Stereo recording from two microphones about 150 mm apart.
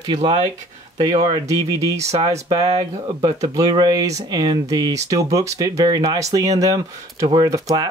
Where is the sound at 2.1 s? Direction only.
45° right (ahead or behind).